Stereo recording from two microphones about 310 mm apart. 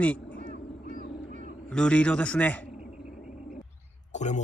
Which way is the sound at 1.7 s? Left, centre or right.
Centre.